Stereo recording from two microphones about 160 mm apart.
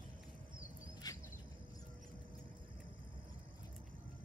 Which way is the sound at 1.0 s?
25° left (ahead or behind).